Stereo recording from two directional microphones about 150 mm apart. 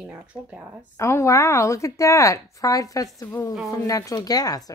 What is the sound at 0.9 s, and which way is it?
A woman's voice, 20° left (ahead or behind).